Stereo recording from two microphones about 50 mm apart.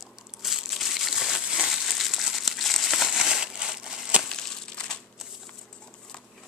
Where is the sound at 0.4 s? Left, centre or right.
Centre.